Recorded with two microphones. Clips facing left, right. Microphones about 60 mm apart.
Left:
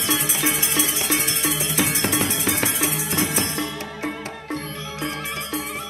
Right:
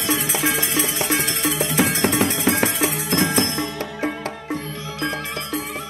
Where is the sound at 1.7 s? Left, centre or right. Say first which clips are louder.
Right 5 dB; right.